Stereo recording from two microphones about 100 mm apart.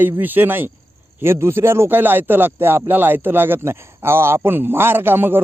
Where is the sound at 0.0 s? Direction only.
20° right (ahead or behind).